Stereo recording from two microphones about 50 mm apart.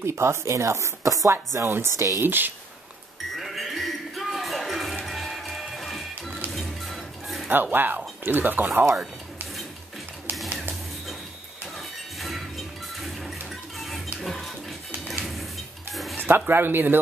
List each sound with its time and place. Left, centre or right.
0.0 s speech: right
1.3 s speech: right
2.2 s speech: right
3.3 s music: centre
7.4 s speech: right
10.3 s music: right
11.7 s a sound: centre
13.5 s music: centre
15.9 s dishes: centre
16.3 s speech: right